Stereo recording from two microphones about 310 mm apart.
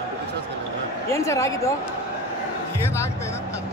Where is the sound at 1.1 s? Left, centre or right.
Centre.